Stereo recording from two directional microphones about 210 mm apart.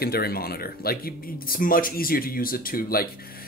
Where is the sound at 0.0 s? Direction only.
45° left (ahead or behind).